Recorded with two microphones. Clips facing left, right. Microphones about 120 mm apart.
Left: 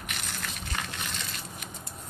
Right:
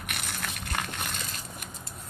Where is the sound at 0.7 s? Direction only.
50° right (ahead or behind).